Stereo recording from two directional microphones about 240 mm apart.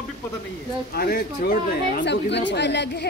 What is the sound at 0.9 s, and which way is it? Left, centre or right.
Speech, left.